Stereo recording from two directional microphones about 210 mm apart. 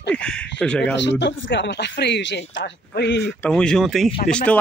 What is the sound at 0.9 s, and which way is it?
Speech, 55° left (ahead or behind).